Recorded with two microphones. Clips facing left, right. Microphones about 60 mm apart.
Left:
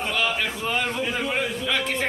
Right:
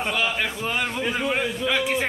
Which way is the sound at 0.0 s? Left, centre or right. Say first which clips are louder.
Even; centre.